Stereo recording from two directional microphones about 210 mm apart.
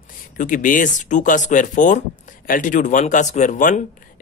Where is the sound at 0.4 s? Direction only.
40° left (ahead or behind).